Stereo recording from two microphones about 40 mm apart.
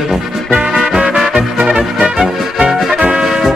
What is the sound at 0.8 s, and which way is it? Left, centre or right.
Music, centre.